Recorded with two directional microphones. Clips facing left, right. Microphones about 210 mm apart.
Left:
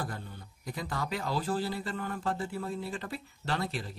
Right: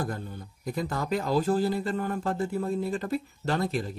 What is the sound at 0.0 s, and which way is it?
A man's voice, 40° right (ahead or behind).